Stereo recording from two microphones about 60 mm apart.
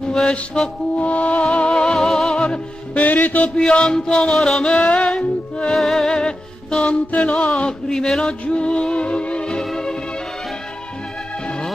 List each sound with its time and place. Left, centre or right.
0.1 s music: centre
2.4 s music: left
3.5 s music: centre
5.8 s music: centre